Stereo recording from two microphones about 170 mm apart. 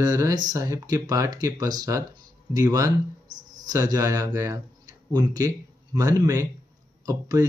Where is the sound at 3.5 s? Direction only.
20° right (ahead or behind).